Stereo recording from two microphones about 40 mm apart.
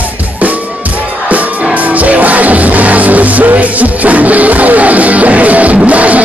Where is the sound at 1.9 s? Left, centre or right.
Right.